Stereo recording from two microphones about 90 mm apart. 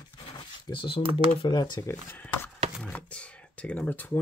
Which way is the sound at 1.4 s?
55° left (ahead or behind).